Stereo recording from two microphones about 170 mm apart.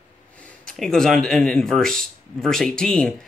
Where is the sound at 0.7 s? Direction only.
Centre (ahead or behind).